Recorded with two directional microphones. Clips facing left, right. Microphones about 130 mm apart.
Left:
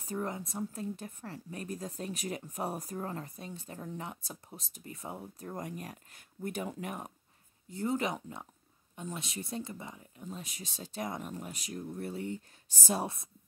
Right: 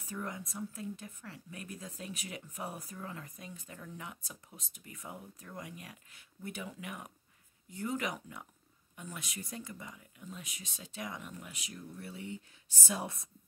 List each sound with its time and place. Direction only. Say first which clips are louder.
0.0 s speech: left 5 dB; 35° left (ahead or behind)
7.7 s speech: left 4 dB; 30° left (ahead or behind)